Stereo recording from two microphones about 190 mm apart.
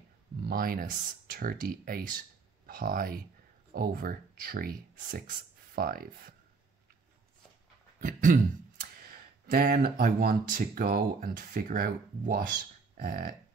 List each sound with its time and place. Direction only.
0.4 s speech: 55° right (ahead or behind)
8.0 s speech: 45° right (ahead or behind)
12.9 s burping: 50° right (ahead or behind)